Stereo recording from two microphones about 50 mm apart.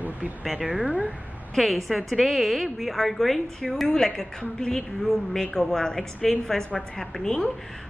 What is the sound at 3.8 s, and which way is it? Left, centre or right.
A woman's voice, centre.